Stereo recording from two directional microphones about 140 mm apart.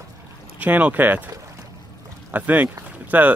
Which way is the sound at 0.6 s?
10° right (ahead or behind).